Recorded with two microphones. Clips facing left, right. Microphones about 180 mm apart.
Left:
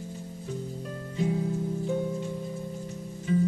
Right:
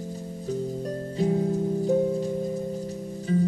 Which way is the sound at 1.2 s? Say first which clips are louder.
Right 4 dB; 40° right (ahead or behind).